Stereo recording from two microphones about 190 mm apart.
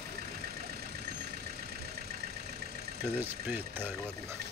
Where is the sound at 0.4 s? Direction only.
55° right (ahead or behind).